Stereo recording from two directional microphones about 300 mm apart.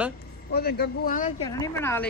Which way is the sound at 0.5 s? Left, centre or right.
Left.